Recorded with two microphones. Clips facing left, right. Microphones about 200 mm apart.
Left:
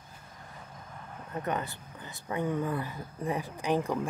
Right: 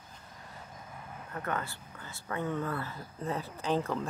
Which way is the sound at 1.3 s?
20° left (ahead or behind).